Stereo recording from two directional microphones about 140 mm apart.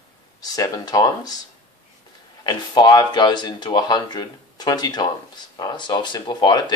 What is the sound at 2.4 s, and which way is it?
Speech, 30° left (ahead or behind).